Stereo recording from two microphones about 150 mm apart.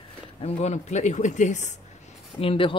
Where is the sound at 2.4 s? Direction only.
35° left (ahead or behind).